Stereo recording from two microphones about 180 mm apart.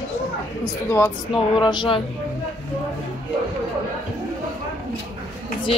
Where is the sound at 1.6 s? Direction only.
25° left (ahead or behind).